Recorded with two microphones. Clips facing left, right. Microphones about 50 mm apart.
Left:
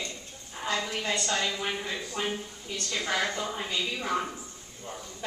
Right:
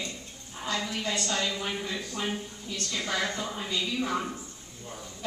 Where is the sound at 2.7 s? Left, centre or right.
Left.